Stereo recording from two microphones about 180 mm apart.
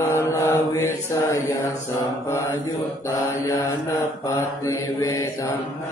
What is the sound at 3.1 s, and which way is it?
Mantra, 15° left (ahead or behind).